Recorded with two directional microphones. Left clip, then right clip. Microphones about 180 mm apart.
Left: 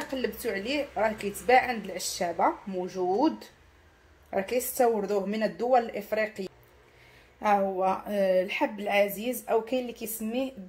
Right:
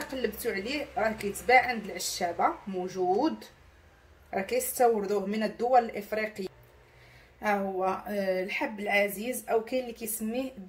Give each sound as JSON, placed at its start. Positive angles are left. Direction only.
{"t": 0.0, "sound": "a woman's voice", "side_deg": 30}